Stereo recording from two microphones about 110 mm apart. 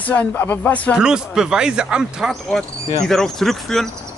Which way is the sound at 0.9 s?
5° right (ahead or behind).